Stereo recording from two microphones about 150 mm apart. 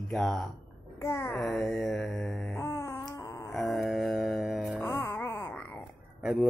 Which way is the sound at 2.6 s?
15° left (ahead or behind).